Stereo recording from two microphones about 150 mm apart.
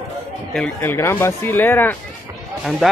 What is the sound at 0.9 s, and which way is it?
Speech, 15° left (ahead or behind).